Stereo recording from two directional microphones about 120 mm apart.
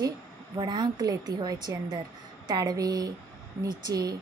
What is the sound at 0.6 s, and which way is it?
A woman's voice, 40° right (ahead or behind).